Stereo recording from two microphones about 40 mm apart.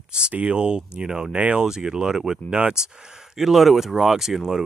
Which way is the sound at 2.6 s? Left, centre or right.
Right.